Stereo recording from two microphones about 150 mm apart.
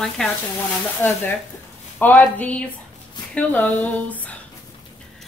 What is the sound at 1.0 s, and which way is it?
Speech, 15° left (ahead or behind).